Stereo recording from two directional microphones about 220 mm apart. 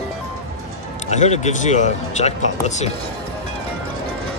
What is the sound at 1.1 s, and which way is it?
Speech, 30° left (ahead or behind).